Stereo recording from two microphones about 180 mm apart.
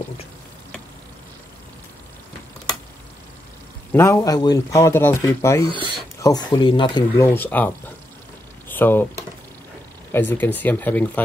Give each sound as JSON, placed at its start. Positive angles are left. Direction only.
{"t": 3.9, "sound": "speech", "side_deg": 15}
{"t": 5.7, "sound": "speech", "side_deg": -25}
{"t": 6.2, "sound": "speech", "side_deg": 20}
{"t": 7.2, "sound": "speech", "side_deg": 10}
{"t": 8.6, "sound": "a sound", "side_deg": 10}
{"t": 10.1, "sound": "speech", "side_deg": 10}